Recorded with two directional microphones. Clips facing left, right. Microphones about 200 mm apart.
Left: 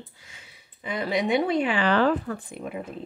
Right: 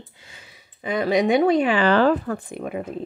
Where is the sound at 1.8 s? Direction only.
35° right (ahead or behind).